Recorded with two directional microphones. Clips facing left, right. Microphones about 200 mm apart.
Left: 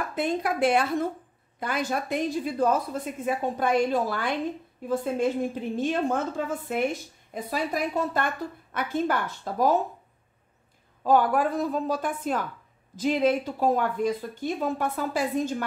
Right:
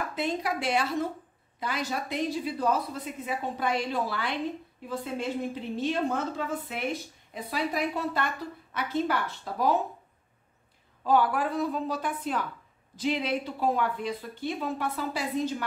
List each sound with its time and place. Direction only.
0.1 s a woman's voice: 50° left (ahead or behind)
11.1 s a woman's voice: 45° left (ahead or behind)